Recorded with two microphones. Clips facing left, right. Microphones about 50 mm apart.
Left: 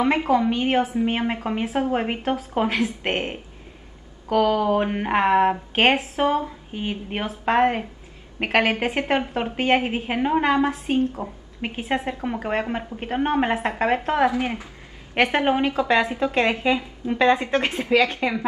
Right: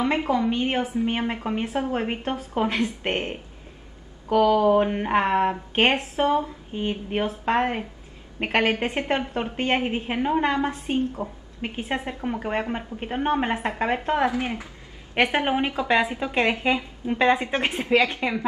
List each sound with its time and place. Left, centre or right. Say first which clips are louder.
0.3 s a woman's voice: left 3 dB; left
4.4 s speech: right 1 dB; left
4.7 s a woman's voice: even; centre
15.1 s a woman's voice: left 2 dB; centre
17.5 s speech: left 3 dB; centre
18.2 s a woman's voice: left 2 dB; centre